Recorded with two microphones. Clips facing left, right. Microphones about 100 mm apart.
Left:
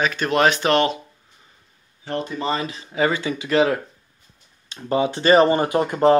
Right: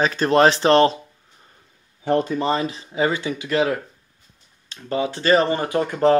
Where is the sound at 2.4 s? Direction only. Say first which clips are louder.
Right 3 dB; 40° right (ahead or behind).